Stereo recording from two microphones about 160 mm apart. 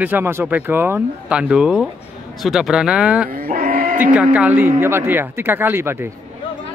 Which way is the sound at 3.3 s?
65° right (ahead or behind).